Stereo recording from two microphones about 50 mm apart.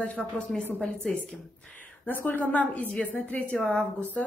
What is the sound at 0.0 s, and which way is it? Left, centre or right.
A woman's voice, left.